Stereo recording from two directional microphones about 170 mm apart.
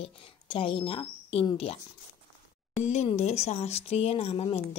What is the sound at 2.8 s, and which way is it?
Speech, 40° left (ahead or behind).